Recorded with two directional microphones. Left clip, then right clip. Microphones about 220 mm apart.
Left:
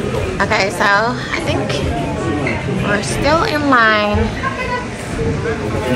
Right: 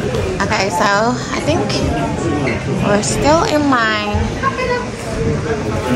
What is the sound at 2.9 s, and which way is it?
A woman's voice, 20° right (ahead or behind).